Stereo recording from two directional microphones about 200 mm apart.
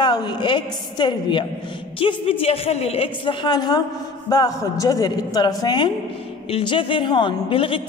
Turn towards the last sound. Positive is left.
turn(degrees=25)  # may be behind; listen again after turning